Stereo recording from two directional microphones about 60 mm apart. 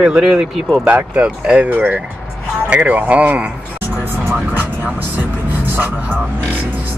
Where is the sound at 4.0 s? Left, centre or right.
Right.